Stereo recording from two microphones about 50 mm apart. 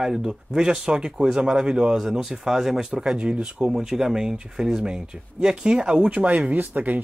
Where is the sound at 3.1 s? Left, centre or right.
Right.